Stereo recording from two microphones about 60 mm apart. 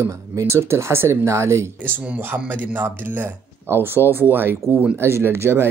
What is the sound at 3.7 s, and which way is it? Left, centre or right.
Speech, right.